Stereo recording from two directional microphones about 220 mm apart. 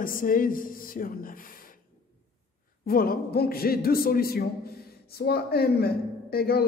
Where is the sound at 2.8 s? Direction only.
40° left (ahead or behind).